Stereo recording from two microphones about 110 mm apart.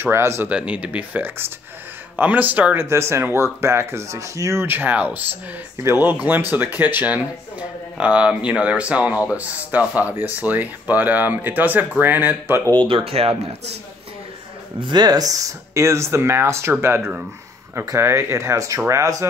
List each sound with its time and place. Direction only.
0.0 s speech: 25° right (ahead or behind)
0.5 s speech: 10° right (ahead or behind)
12.8 s speech: 60° right (ahead or behind)
14.8 s speech: 40° right (ahead or behind)